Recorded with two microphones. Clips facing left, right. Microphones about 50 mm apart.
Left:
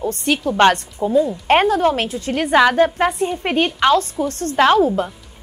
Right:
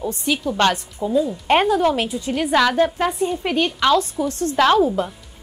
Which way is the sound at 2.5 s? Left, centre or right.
Left.